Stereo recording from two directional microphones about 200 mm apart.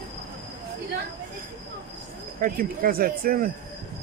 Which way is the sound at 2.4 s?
45° right (ahead or behind).